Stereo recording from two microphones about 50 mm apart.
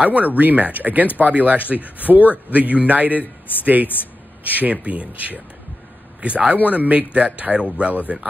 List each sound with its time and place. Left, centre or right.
0.0 s a man's voice: right